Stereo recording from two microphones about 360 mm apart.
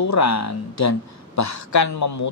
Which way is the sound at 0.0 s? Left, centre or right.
Left.